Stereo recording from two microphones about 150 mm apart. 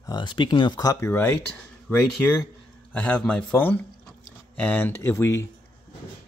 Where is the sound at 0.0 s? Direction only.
30° left (ahead or behind).